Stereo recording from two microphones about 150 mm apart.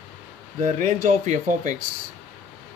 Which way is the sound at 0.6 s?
60° right (ahead or behind).